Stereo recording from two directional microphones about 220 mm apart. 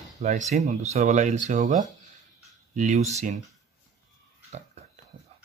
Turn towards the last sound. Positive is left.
turn(degrees=-30)  # may be behind; listen again after turning